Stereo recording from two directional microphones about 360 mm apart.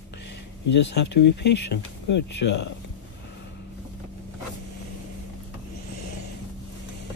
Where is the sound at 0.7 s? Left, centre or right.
Left.